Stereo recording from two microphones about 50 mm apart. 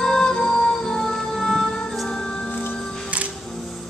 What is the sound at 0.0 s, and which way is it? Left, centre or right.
Music, centre.